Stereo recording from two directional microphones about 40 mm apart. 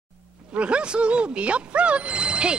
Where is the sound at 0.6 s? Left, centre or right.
Right.